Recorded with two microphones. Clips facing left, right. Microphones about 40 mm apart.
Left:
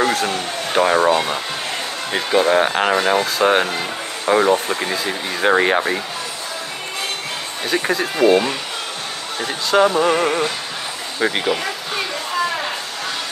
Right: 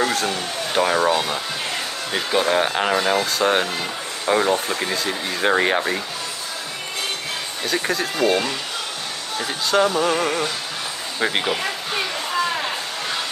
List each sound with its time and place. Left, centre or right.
0.3 s speech: centre
2.4 s speech: centre
7.6 s speech: centre
11.1 s speech: centre